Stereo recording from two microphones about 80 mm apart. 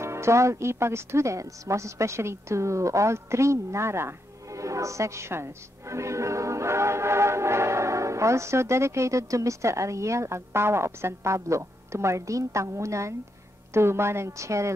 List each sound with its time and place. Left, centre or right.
0.0 s a woman's voice: right